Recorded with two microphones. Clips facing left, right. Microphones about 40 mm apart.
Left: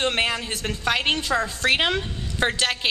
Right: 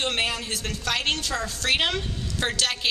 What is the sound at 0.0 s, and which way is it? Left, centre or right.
A woman's voice, left.